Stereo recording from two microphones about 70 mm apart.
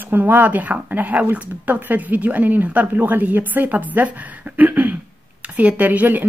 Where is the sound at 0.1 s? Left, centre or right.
Right.